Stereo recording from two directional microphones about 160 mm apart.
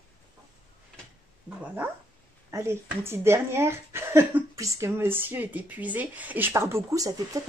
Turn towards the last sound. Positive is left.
turn(degrees=-20)  # may be behind; listen again after turning